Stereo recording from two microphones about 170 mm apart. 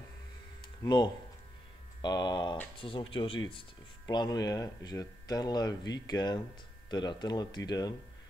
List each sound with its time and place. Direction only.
0.8 s speech: 25° left (ahead or behind)